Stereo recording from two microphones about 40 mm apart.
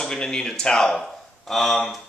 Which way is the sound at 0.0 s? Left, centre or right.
Centre.